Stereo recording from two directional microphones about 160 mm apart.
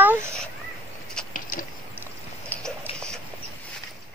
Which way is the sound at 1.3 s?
60° left (ahead or behind).